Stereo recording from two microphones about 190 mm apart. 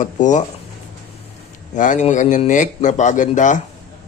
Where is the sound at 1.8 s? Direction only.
40° left (ahead or behind).